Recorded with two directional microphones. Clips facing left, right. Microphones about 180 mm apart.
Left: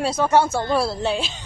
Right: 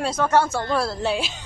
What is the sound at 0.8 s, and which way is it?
Speech, centre (ahead or behind).